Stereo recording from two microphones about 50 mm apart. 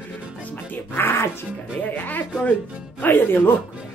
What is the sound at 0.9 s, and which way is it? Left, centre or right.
Speech, left.